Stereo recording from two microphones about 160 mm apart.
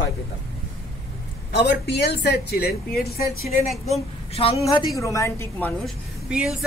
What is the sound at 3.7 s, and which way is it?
Speech, centre (ahead or behind).